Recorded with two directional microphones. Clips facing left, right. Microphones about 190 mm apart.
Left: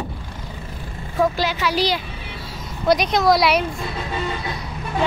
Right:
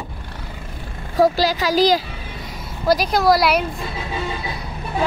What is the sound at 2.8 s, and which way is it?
Speech, 5° right (ahead or behind).